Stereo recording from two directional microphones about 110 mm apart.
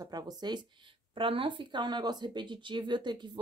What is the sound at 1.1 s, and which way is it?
Speech, 50° right (ahead or behind).